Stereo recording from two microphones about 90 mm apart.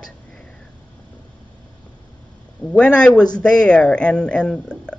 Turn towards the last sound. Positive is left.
turn(degrees=10)  # may be behind; listen again after turning